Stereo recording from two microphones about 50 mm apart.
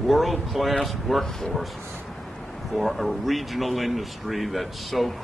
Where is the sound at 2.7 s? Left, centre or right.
Centre.